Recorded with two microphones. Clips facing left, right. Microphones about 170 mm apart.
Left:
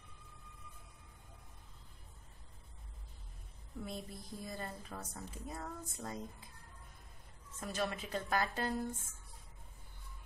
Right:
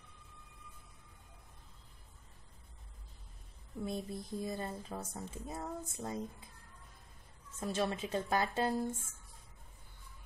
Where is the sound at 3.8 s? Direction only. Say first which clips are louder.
Right 6 dB; 25° right (ahead or behind).